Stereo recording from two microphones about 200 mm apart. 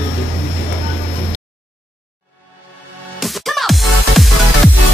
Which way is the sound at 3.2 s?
Centre (ahead or behind).